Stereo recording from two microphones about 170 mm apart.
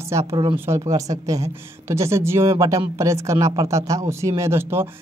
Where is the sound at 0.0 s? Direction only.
15° right (ahead or behind).